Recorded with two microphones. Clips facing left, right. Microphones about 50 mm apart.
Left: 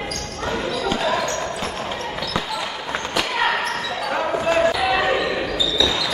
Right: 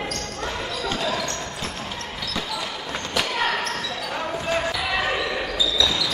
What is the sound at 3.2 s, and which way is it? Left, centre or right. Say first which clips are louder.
Basketball bounce: left 3 dB; centre.